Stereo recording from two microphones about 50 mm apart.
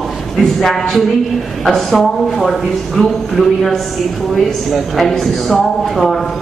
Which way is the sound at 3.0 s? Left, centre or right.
Centre.